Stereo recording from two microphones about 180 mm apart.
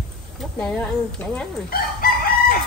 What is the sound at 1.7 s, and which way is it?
Chicken, 55° left (ahead or behind).